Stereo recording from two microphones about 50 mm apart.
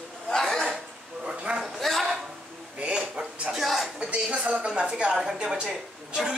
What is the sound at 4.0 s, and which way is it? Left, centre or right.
A woman's voice, right.